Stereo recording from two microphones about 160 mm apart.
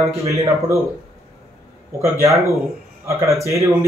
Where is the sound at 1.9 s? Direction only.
20° right (ahead or behind).